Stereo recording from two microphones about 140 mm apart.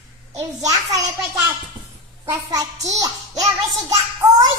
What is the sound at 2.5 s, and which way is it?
A child's voice, 25° right (ahead or behind).